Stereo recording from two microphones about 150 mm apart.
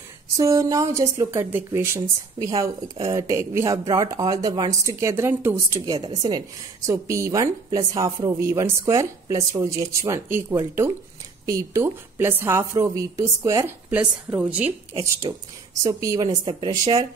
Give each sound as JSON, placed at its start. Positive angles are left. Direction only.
{"t": 0.4, "sound": "speech", "side_deg": -20}
{"t": 5.9, "sound": "a woman's voice", "side_deg": -30}
{"t": 14.6, "sound": "speech", "side_deg": -40}
{"t": 15.8, "sound": "speech", "side_deg": -20}